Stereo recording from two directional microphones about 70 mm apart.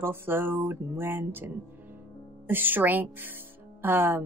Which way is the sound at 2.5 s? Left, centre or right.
Right.